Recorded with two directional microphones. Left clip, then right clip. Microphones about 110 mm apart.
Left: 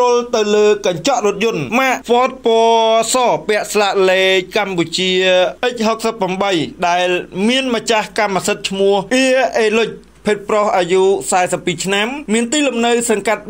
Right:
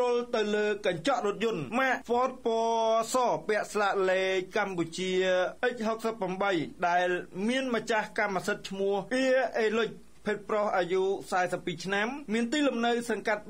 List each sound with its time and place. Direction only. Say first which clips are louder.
0.0 s speech: left 14 dB; 15° left (ahead or behind)